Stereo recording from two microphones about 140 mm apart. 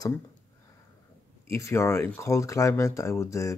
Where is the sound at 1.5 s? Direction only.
20° left (ahead or behind).